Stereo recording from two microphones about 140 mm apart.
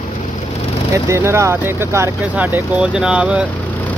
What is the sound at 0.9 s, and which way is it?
Speech, 20° right (ahead or behind).